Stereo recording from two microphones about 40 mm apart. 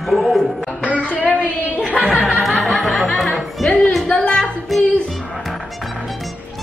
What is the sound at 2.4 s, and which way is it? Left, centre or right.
Music, centre.